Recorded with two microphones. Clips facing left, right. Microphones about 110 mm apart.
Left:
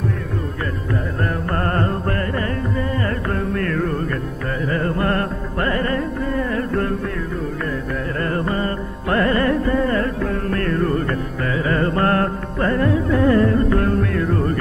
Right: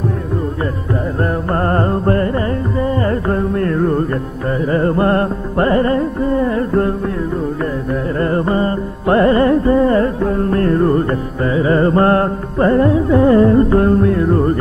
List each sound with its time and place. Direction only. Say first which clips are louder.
1.5 s carnatic music: right 6 dB; 25° right (ahead or behind)
4.6 s music: right 7 dB; 30° right (ahead or behind)
8.2 s music: right 6 dB; 30° right (ahead or behind)